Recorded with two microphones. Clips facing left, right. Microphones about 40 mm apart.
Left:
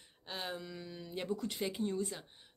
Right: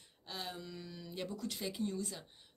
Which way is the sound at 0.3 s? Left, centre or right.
Left.